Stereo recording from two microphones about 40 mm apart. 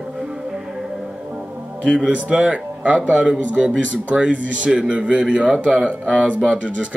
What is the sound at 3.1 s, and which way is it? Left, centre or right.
Speech, centre.